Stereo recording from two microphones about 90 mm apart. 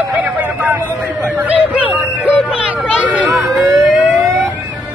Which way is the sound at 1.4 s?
15° right (ahead or behind).